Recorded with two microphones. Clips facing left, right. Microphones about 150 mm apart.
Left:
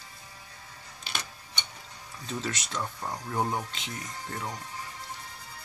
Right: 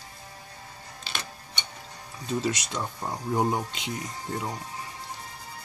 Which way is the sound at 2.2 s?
10° right (ahead or behind).